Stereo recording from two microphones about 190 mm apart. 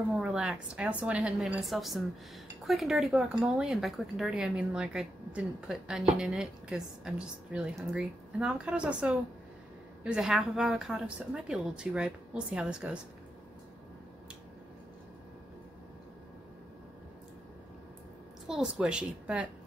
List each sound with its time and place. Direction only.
0.1 s speech: 5° right (ahead or behind)
18.5 s speech: 5° right (ahead or behind)